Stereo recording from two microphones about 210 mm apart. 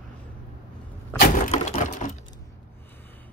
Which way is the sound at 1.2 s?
40° left (ahead or behind).